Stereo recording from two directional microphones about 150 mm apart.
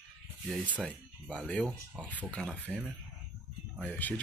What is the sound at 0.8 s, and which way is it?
Speech, 5° left (ahead or behind).